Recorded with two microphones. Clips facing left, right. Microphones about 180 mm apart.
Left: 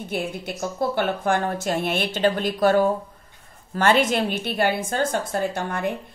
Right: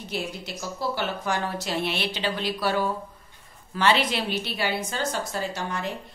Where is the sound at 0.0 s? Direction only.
50° left (ahead or behind).